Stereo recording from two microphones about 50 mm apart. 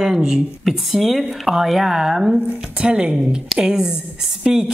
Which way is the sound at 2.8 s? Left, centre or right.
Centre.